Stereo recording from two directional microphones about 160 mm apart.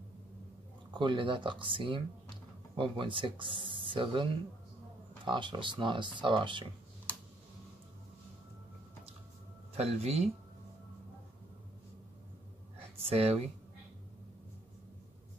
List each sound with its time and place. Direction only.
0.9 s speech: 30° right (ahead or behind)
9.8 s speech: 40° right (ahead or behind)
13.0 s speech: 40° right (ahead or behind)